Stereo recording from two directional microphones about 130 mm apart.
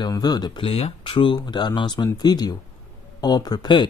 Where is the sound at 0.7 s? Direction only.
50° left (ahead or behind).